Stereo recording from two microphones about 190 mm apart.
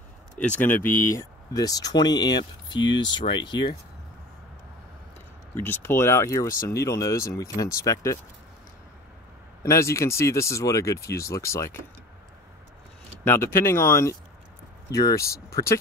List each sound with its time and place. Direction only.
0.6 s speech: 10° left (ahead or behind)
2.8 s speech: 70° left (ahead or behind)
3.1 s speech: 25° left (ahead or behind)
5.5 s speech: 10° left (ahead or behind)
9.6 s speech: 15° left (ahead or behind)
13.2 s speech: 10° left (ahead or behind)